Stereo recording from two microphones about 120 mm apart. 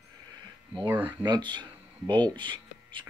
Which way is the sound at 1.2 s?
40° right (ahead or behind).